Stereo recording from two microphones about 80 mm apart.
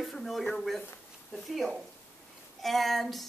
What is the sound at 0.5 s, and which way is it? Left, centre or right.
A woman's voice, centre.